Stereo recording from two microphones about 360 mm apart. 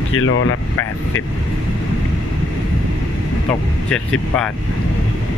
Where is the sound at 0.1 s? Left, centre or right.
Left.